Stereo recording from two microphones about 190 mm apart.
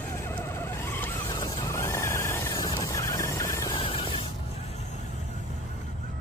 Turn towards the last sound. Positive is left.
turn(degrees=30)  # may be behind; listen again after turning